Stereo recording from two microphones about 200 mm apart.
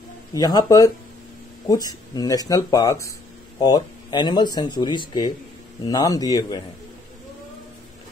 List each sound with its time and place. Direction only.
0.3 s speech: 20° left (ahead or behind)